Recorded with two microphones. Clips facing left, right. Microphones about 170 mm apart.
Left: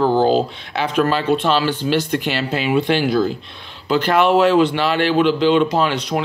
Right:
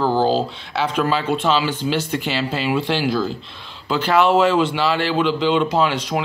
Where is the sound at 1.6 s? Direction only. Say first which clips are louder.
Left 3 dB; 5° right (ahead or behind).